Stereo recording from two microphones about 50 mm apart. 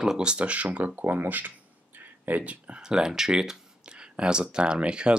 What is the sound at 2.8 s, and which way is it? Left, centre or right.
Speech, centre.